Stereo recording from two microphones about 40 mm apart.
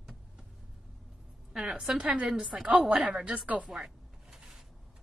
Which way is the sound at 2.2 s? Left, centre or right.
Centre.